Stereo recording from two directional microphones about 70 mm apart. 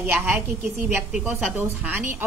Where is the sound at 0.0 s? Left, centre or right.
Right.